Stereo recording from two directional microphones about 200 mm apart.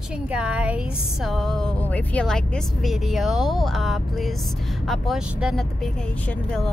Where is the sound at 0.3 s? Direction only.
5° right (ahead or behind).